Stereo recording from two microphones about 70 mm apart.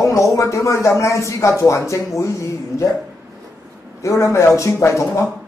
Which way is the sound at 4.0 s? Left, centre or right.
Left.